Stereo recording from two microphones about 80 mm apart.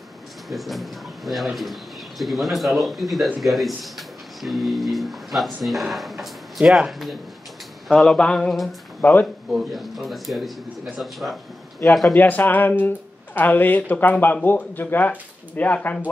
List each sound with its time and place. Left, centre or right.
0.5 s speech: centre
9.0 s speech: left
9.5 s speech: centre
12.1 s speech: left